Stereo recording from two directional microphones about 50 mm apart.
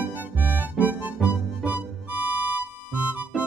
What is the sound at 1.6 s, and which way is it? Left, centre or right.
Music, right.